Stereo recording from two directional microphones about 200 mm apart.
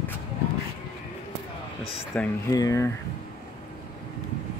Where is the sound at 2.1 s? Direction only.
15° left (ahead or behind).